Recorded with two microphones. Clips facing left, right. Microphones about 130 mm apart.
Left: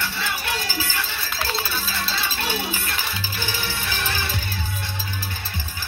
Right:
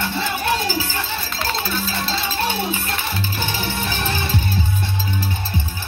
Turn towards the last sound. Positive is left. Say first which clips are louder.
# right 4 dB
turn(degrees=-25)  # may be behind; listen again after turning